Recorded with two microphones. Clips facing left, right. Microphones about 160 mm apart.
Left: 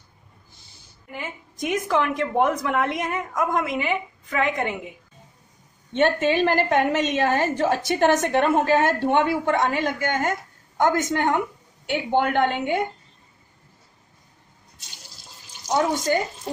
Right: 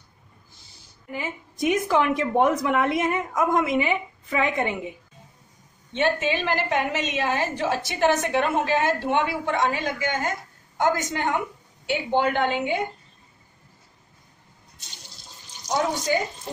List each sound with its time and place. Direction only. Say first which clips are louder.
1.1 s a woman's voice: right 3 dB; 5° right (ahead or behind)
5.9 s a woman's voice: left 4 dB; 50° left (ahead or behind)
15.9 s a woman's voice: left 2 dB; 50° left (ahead or behind)